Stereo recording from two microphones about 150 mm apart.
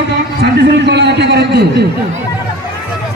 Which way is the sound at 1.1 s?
90° right.